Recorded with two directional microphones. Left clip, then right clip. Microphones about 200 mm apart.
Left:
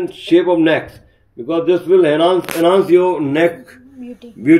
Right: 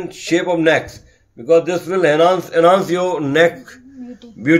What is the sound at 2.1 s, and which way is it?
Speech, 65° right (ahead or behind).